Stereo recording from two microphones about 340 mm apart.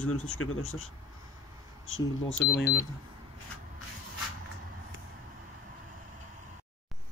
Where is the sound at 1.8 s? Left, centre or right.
Left.